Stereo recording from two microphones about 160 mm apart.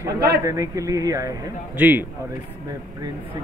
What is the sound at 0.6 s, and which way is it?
A man's voice, 20° right (ahead or behind).